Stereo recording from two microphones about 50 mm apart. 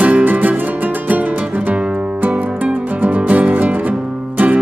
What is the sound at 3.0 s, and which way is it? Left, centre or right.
Music, right.